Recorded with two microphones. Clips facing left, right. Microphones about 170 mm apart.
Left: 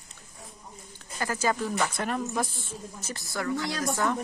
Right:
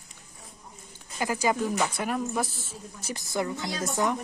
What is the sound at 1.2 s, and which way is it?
A woman's voice, 15° right (ahead or behind).